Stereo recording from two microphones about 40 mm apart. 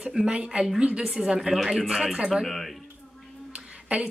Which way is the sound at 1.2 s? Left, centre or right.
Centre.